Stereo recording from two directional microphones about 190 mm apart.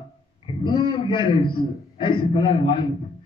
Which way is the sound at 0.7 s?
25° left (ahead or behind).